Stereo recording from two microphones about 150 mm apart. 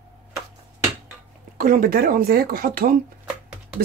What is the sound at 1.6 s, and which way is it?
Speech, 70° right (ahead or behind).